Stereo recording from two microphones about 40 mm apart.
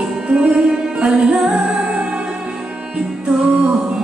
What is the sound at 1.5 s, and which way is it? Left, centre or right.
Music, right.